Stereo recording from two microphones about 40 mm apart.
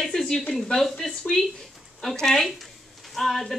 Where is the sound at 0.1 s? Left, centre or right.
Left.